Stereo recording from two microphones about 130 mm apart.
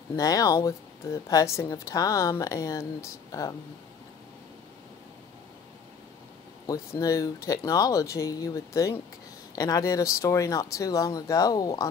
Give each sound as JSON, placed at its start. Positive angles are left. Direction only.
{"t": 0.1, "sound": "speech", "side_deg": 25}
{"t": 6.6, "sound": "speech", "side_deg": 25}